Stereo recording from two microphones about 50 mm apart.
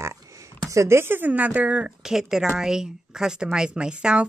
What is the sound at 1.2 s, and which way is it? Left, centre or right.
Speech, right.